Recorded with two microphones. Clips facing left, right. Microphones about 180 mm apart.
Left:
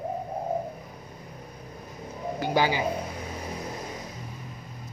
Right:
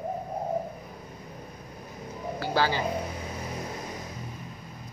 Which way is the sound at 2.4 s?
15° left (ahead or behind).